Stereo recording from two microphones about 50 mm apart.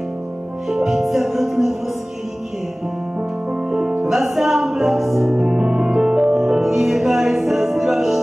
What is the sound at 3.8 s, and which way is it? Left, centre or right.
Music, centre.